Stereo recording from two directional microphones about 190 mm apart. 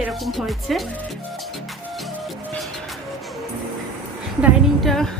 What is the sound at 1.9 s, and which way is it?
Music, centre (ahead or behind).